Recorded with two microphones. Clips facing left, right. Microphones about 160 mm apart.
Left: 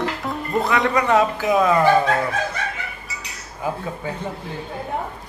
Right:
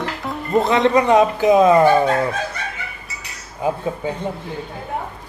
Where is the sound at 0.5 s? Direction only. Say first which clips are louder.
Right 5 dB; 20° right (ahead or behind).